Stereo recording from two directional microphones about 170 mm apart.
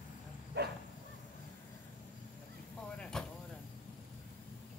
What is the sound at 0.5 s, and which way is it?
Dog, 80° right.